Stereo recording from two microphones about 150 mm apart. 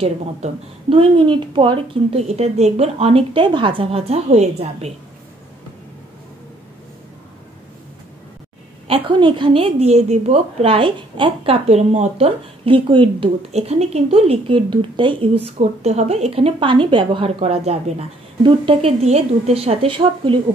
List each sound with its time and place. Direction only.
0.0 s a woman's voice: 40° right (ahead or behind)
8.8 s a woman's voice: 35° right (ahead or behind)
12.6 s a woman's voice: 35° right (ahead or behind)
15.8 s a woman's voice: 45° right (ahead or behind)